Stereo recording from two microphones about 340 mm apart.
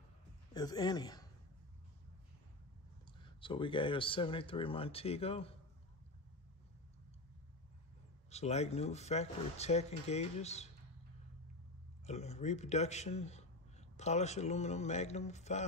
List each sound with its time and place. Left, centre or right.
0.5 s speech: centre
3.1 s speech: centre
8.3 s speech: centre
12.1 s speech: centre